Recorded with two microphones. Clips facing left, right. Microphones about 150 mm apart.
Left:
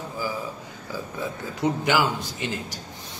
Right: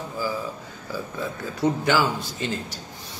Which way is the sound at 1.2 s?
15° left (ahead or behind).